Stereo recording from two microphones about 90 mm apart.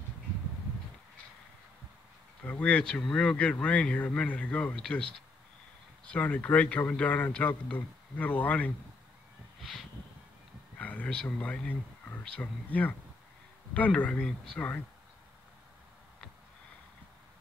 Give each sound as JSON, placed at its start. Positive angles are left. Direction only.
{"t": 2.4, "sound": "speech", "side_deg": 15}
{"t": 9.6, "sound": "a sound", "side_deg": 0}
{"t": 10.8, "sound": "speech", "side_deg": 15}